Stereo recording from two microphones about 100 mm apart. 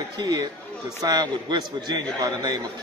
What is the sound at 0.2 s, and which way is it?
A man's voice, 40° right (ahead or behind).